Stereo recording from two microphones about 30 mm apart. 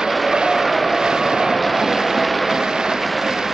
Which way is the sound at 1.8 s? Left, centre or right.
Centre.